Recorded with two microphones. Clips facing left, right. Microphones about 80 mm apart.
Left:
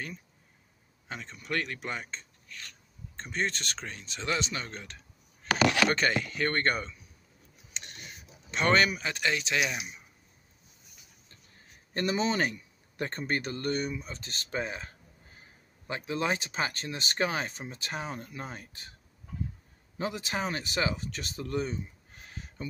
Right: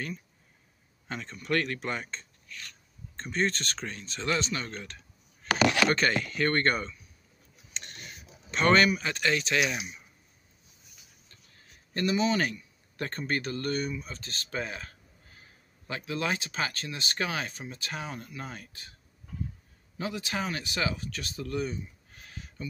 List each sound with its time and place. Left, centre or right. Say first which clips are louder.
1.0 s speech: right 4 dB; centre
7.7 s a sound: right 1 dB; centre
8.5 s speech: right 2 dB; centre
11.5 s a man's voice: left 1 dB; left
20.0 s speech: even; left